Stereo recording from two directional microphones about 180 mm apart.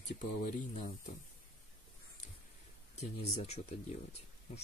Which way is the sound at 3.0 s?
35° left (ahead or behind).